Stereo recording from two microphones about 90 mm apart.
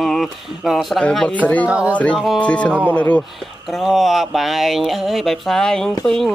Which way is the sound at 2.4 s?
15° left (ahead or behind).